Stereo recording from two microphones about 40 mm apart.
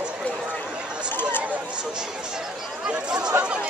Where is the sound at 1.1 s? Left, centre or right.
Left.